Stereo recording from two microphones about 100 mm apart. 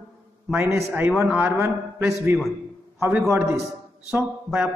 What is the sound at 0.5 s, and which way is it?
A man's voice, 25° right (ahead or behind).